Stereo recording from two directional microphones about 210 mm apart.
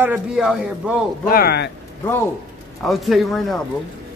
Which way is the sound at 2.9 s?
Centre (ahead or behind).